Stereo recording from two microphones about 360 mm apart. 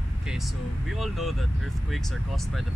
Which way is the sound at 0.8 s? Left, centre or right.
Centre.